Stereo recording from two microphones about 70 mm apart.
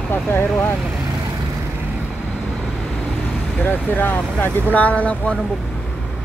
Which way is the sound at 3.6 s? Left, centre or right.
Left.